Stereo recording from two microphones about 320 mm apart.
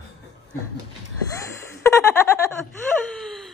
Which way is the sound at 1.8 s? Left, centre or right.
Centre.